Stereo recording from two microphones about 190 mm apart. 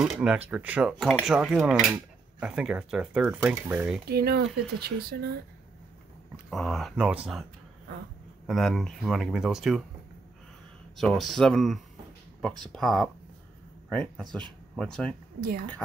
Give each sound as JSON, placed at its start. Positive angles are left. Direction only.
{"t": 0.0, "sound": "speech", "side_deg": -5}
{"t": 4.1, "sound": "speech", "side_deg": -55}
{"t": 6.5, "sound": "speech", "side_deg": 0}
{"t": 8.5, "sound": "speech", "side_deg": 0}
{"t": 11.0, "sound": "speech", "side_deg": 0}